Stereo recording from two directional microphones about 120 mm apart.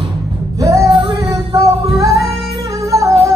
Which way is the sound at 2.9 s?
25° right (ahead or behind).